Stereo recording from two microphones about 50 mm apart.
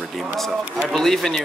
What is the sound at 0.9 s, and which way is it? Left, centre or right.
Speech, centre.